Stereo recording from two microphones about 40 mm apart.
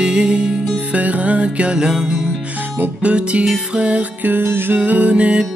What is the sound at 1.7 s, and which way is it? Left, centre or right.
Music, centre.